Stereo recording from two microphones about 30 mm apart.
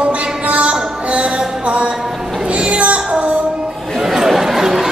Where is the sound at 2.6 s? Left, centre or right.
Right.